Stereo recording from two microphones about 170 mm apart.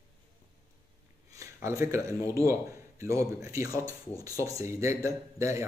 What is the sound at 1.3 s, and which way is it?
A man's voice, 20° right (ahead or behind).